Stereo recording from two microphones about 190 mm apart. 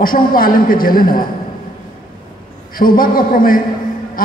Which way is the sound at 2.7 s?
50° left (ahead or behind).